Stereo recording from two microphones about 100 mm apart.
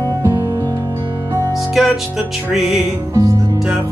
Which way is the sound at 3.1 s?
35° right (ahead or behind).